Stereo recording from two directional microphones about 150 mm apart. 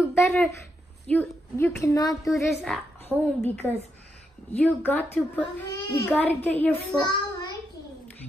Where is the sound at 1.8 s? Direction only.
20° left (ahead or behind).